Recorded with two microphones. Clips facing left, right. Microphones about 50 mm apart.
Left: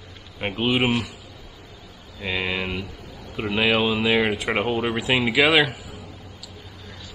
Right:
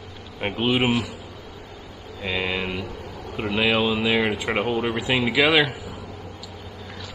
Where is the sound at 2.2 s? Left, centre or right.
Centre.